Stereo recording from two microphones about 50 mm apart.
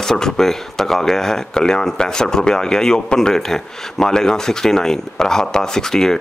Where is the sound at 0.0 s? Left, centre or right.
Centre.